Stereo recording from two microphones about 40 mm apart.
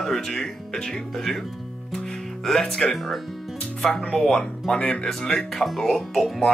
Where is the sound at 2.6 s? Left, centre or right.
Left.